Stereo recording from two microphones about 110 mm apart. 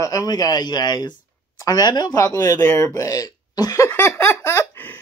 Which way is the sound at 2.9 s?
30° left (ahead or behind).